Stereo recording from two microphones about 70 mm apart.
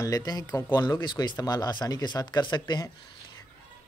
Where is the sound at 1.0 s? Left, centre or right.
Left.